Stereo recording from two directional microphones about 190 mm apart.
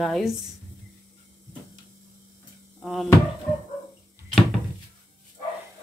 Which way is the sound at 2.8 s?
Centre (ahead or behind).